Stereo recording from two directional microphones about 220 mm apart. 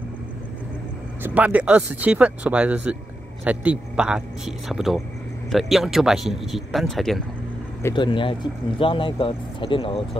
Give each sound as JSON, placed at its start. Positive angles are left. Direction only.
{"t": 1.2, "sound": "speech", "side_deg": -5}
{"t": 7.8, "sound": "speech", "side_deg": 20}